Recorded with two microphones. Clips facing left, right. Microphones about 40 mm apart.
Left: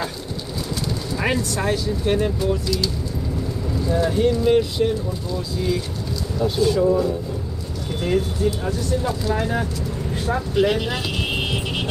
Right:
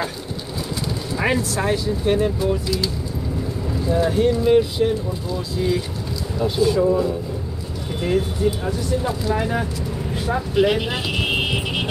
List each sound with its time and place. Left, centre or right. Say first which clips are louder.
1.1 s speech: right 2 dB; centre
8.5 s speech: right 1 dB; centre